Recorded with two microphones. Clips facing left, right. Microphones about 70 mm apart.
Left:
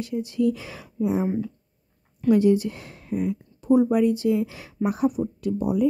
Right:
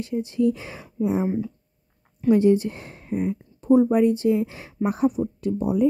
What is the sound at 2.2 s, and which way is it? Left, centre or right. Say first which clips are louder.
A woman's voice: right 1 dB; right.